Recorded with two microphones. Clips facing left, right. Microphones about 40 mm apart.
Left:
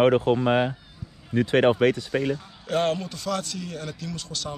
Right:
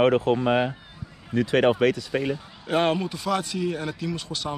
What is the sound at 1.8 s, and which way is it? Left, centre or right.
Speech, left.